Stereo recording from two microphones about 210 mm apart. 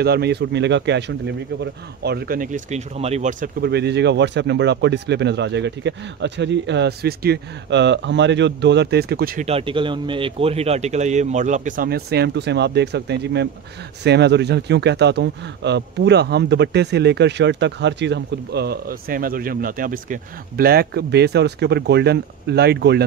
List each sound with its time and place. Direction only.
0.0 s a man's voice: 50° right (ahead or behind); by 3.4 s 35° right (ahead or behind)
3.6 s speech: 50° right (ahead or behind)
9.5 s a man's voice: 25° right (ahead or behind); by 23.0 s 50° right (ahead or behind)